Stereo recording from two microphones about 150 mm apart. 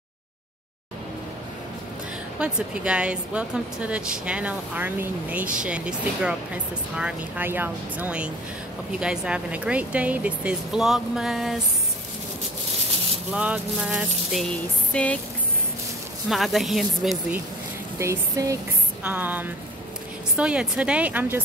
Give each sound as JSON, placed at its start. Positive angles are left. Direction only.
{"t": 2.3, "sound": "speech", "side_deg": -5}
{"t": 13.3, "sound": "speech", "side_deg": -10}
{"t": 14.9, "sound": "a sound", "side_deg": 10}
{"t": 16.3, "sound": "speech", "side_deg": 0}
{"t": 17.9, "sound": "speech", "side_deg": -20}